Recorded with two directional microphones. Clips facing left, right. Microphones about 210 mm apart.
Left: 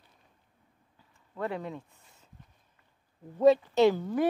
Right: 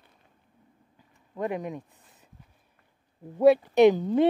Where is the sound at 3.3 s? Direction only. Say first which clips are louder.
Right 3 dB; 10° right (ahead or behind).